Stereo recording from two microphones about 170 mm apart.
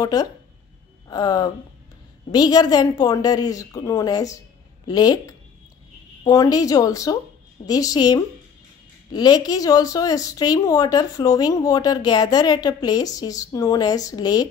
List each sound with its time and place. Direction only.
0.0 s speech: 20° left (ahead or behind)